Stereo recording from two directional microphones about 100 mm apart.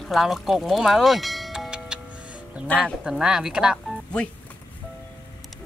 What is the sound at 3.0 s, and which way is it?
Speech, 5° right (ahead or behind).